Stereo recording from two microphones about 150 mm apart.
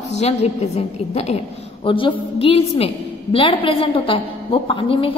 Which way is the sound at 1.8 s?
35° left (ahead or behind).